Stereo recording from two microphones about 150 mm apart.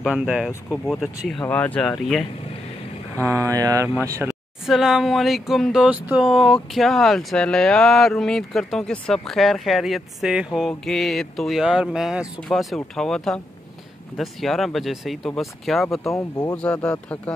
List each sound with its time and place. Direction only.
0.0 s speech: 5° right (ahead or behind)
1.5 s speech: 10° left (ahead or behind)
3.2 s speech: 20° right (ahead or behind)
4.6 s speech: 5° right (ahead or behind)
16.1 s speech: 25° left (ahead or behind)
16.5 s speech: 5° left (ahead or behind)